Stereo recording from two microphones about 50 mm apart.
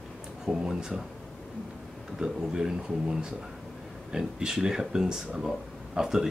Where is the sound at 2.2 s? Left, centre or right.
Centre.